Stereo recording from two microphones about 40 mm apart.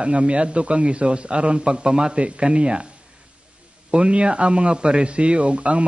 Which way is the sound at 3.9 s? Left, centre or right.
Right.